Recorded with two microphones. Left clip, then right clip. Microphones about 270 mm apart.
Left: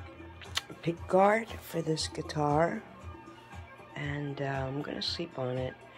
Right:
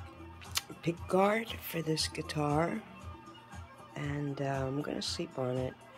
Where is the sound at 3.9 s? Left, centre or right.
Centre.